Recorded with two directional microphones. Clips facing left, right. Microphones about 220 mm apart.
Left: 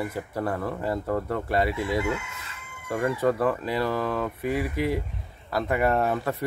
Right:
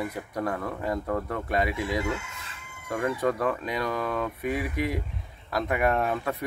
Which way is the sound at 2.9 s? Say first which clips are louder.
Left 2 dB; centre (ahead or behind).